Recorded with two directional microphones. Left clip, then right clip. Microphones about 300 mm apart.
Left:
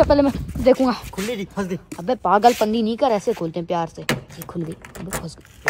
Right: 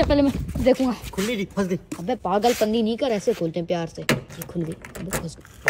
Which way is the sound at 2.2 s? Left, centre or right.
Left.